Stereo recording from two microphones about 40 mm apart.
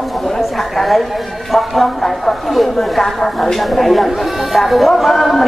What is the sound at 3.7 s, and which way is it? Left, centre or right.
Speech, centre.